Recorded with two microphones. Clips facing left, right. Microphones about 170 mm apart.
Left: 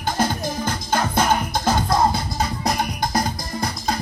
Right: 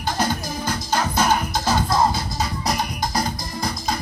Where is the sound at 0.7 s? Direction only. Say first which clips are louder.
Right 1 dB; 55° left (ahead or behind).